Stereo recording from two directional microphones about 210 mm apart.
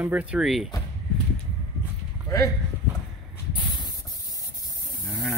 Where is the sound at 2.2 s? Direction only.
15° left (ahead or behind).